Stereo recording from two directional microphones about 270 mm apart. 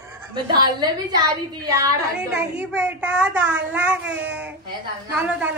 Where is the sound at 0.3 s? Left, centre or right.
Centre.